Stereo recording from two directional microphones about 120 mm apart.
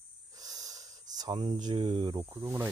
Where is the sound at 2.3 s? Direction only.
20° right (ahead or behind).